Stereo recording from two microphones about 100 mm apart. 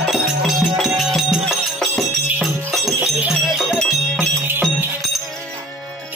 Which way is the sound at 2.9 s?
15° right (ahead or behind).